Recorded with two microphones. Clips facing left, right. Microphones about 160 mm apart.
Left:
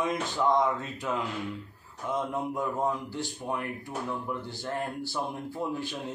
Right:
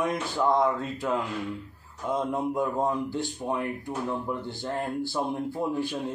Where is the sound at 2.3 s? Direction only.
15° right (ahead or behind).